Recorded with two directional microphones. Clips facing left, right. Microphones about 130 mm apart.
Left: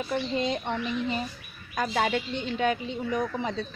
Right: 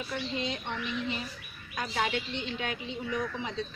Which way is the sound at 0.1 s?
45° left (ahead or behind).